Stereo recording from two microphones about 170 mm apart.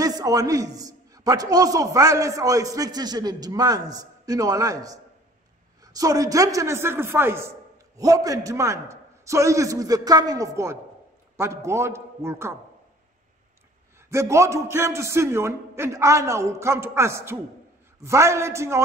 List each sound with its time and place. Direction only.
0.0 s a man's voice: 20° right (ahead or behind)
14.1 s a man's voice: 15° right (ahead or behind)